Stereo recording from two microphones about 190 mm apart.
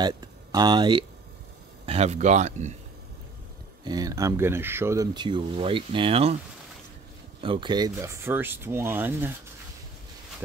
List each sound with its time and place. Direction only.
0.0 s speech: 20° right (ahead or behind)
1.9 s speech: 35° right (ahead or behind)
3.8 s speech: 20° right (ahead or behind)
7.4 s speech: 25° right (ahead or behind)